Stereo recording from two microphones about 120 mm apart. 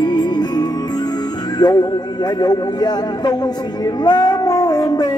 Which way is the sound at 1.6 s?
35° left (ahead or behind).